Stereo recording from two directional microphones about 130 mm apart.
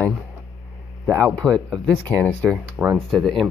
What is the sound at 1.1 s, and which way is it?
Speech, 10° left (ahead or behind).